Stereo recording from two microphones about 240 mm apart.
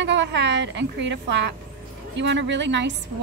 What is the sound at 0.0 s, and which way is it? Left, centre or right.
A woman's voice, right.